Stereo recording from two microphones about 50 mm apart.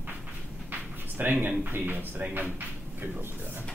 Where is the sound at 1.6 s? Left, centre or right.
Right.